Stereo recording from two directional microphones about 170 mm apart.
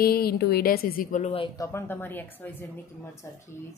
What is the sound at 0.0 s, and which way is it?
A woman's voice, 65° left (ahead or behind).